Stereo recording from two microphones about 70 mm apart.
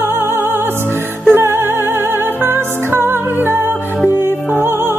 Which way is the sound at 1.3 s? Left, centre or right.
Right.